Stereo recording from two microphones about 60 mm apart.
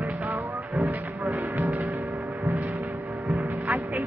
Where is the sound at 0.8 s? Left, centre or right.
Right.